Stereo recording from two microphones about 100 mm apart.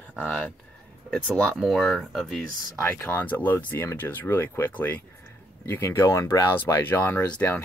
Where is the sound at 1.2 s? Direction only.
10° left (ahead or behind).